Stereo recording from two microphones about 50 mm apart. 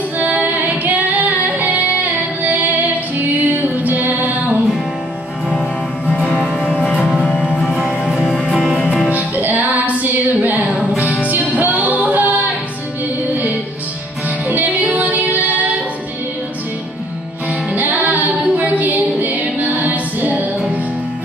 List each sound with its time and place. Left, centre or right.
0.2 s music: right
3.2 s music: right
6.6 s music: left
7.6 s music: centre
9.1 s music: right
14.5 s music: right
17.5 s music: right